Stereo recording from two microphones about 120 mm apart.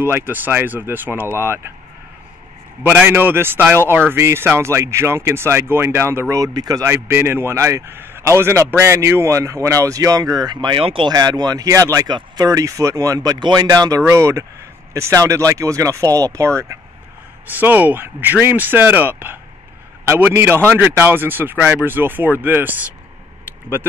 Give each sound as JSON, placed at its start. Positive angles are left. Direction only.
{"t": 0.0, "sound": "speech", "side_deg": -15}
{"t": 2.8, "sound": "speech", "side_deg": -15}
{"t": 11.1, "sound": "speech", "side_deg": -35}